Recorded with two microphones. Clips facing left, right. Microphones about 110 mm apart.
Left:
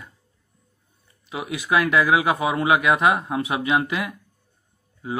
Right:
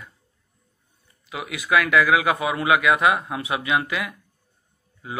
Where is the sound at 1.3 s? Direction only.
30° left (ahead or behind).